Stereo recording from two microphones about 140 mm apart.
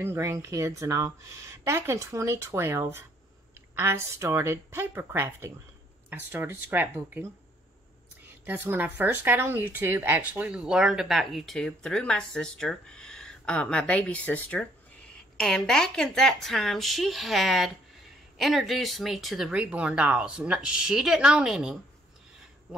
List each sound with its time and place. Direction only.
0.0 s speech: 20° right (ahead or behind)
8.5 s speech: 15° right (ahead or behind)
22.7 s dog: 5° right (ahead or behind)